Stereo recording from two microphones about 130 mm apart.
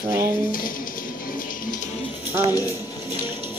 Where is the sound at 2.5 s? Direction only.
25° left (ahead or behind).